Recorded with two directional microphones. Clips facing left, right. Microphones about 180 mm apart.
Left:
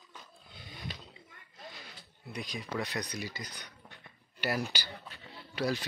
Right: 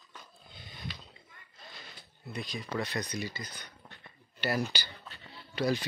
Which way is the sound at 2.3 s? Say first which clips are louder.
Right 1 dB; 15° left (ahead or behind).